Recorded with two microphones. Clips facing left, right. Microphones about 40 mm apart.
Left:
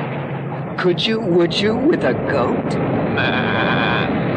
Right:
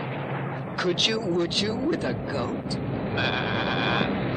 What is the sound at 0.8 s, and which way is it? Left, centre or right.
Speech, left.